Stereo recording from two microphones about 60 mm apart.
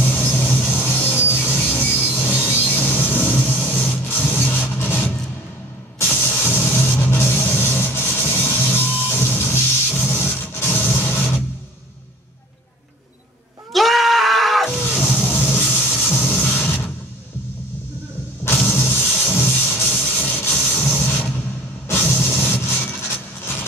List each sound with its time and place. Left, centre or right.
0.0 s music: left
2.5 s printer: left
5.9 s music: left
13.7 s screaming: centre
15.2 s a sound: left
16.4 s mechanisms: left
18.7 s music: left
20.2 s a sound: left
22.1 s vehicle: left